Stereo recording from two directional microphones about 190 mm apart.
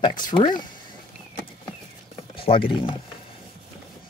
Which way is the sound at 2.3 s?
30° left (ahead or behind).